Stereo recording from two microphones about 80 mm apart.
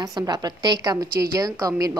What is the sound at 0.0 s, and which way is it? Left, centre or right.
Speech, right.